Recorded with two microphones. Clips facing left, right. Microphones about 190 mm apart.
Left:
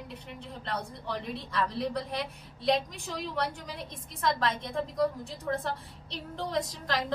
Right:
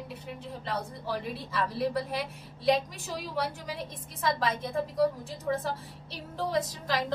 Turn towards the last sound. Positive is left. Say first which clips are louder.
# right 1 dB
turn(degrees=0)  # may be behind; listen again after turning